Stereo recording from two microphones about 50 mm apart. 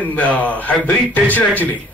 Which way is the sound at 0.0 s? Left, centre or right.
Left.